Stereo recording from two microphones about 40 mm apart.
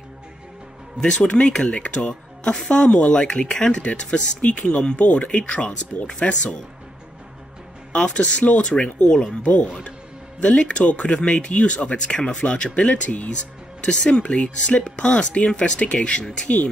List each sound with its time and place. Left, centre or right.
1.0 s speech: centre
7.9 s speech: left
13.0 s speech: left
13.8 s speech: centre